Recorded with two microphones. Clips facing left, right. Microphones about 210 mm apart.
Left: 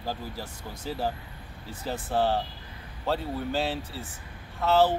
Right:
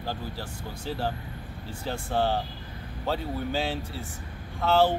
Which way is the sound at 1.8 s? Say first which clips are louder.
Left 1 dB; 5° left (ahead or behind).